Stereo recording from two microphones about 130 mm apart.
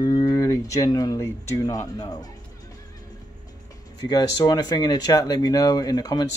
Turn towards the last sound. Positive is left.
turn(degrees=30)  # may be behind; listen again after turning